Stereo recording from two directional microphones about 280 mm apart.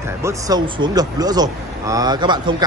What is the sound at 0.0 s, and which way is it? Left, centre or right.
A man's voice, centre.